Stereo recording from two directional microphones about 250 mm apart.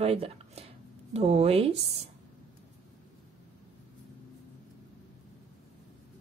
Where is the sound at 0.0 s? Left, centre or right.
Right.